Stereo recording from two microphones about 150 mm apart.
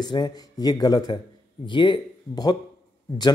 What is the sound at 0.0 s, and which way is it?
A man's voice, 30° left (ahead or behind).